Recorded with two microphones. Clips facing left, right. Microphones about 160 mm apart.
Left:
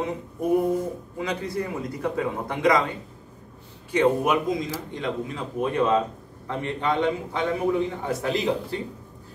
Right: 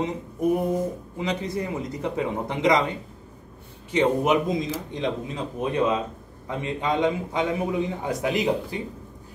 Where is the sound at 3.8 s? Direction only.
20° right (ahead or behind).